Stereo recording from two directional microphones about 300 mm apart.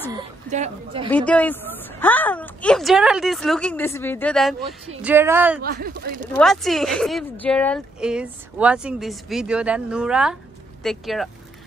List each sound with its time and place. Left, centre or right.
0.1 s a woman's voice: centre
1.1 s a woman's voice: centre
5.6 s speech: right
6.3 s speech: centre